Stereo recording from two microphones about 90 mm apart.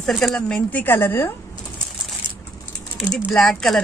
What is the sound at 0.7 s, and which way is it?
Speech, 20° left (ahead or behind).